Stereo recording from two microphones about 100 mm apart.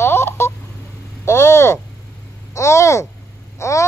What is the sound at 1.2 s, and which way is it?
Speech, 30° left (ahead or behind).